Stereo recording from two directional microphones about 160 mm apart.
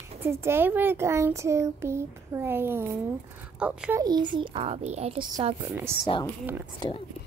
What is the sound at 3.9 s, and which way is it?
A child's voice, 25° right (ahead or behind).